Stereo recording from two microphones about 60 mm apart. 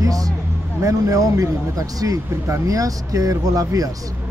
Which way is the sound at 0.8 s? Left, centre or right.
Right.